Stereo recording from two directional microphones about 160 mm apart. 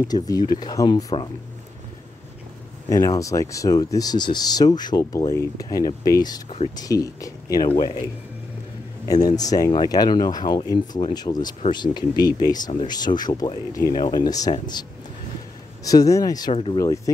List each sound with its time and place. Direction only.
0.1 s speech: 25° left (ahead or behind)
2.9 s speech: 20° left (ahead or behind)
9.0 s speech: 25° left (ahead or behind)
15.8 s speech: 20° left (ahead or behind)
16.5 s speech: 35° left (ahead or behind)
16.8 s speech: 20° left (ahead or behind)